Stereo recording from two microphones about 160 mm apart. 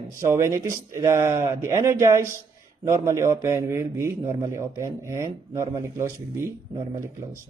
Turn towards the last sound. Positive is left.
turn(degrees=-20)  # may be behind; listen again after turning